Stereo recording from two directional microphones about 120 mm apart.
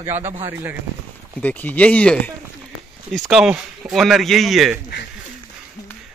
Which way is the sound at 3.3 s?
5° right (ahead or behind).